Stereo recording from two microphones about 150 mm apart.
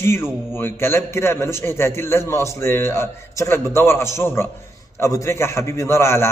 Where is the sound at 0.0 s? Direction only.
15° left (ahead or behind).